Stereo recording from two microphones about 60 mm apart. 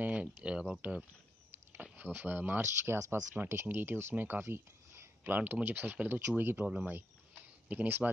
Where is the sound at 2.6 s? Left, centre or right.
Right.